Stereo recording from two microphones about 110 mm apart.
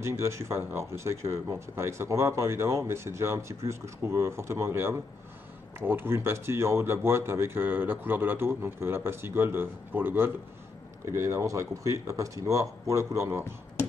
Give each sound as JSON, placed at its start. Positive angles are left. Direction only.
{"t": 0.0, "sound": "speech", "side_deg": -25}